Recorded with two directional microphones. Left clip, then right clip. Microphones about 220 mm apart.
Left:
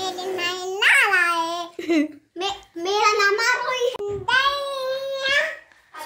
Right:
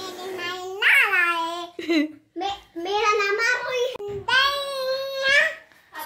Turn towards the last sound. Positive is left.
turn(degrees=5)  # may be behind; listen again after turning